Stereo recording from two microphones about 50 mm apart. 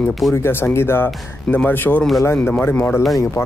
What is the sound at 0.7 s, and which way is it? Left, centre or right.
Speech, left.